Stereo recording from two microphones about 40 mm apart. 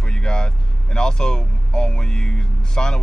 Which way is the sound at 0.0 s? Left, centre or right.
Centre.